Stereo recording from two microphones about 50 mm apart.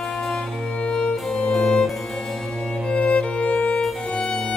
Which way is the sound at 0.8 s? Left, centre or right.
Centre.